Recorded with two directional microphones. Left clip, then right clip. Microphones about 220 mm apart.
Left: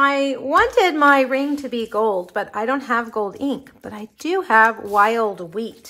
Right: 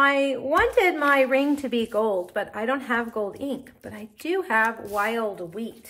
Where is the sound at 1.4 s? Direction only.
Centre (ahead or behind).